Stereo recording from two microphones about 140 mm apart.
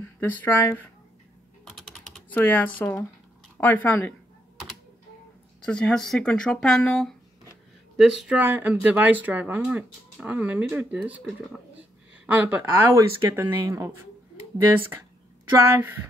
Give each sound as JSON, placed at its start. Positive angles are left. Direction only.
{"t": 0.2, "sound": "speech", "side_deg": 15}
{"t": 1.6, "sound": "typing", "side_deg": 5}
{"t": 2.3, "sound": "speech", "side_deg": 15}
{"t": 5.7, "sound": "speech", "side_deg": 5}
{"t": 8.4, "sound": "speech", "side_deg": -15}
{"t": 15.5, "sound": "speech", "side_deg": -15}